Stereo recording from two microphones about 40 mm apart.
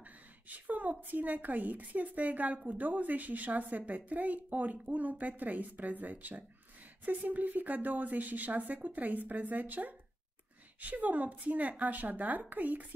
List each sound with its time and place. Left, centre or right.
0.5 s a woman's voice: right